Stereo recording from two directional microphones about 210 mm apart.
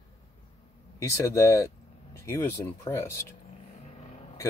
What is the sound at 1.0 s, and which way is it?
Speech, 15° left (ahead or behind).